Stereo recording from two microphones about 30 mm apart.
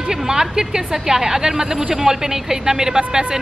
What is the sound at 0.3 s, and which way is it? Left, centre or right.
A woman's voice, right.